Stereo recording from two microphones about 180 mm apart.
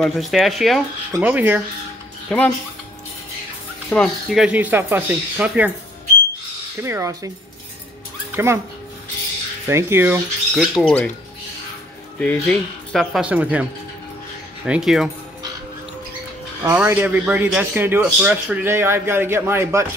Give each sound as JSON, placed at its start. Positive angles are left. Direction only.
{"t": 0.0, "sound": "a man's voice", "side_deg": 0}
{"t": 2.2, "sound": "speech", "side_deg": 10}
{"t": 3.9, "sound": "a man's voice", "side_deg": 0}
{"t": 6.8, "sound": "a man's voice", "side_deg": -15}
{"t": 8.3, "sound": "speech", "side_deg": -15}
{"t": 9.7, "sound": "a man's voice", "side_deg": -15}
{"t": 10.7, "sound": "speech", "side_deg": 5}
{"t": 12.2, "sound": "speech", "side_deg": 5}
{"t": 14.7, "sound": "speech", "side_deg": -5}
{"t": 16.7, "sound": "a man's voice", "side_deg": -10}